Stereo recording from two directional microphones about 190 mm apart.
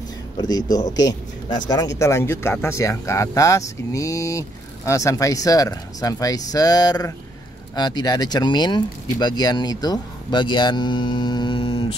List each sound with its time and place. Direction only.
0.4 s speech: 20° left (ahead or behind)